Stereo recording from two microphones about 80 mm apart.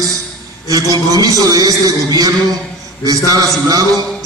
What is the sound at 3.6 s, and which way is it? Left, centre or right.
Speech, right.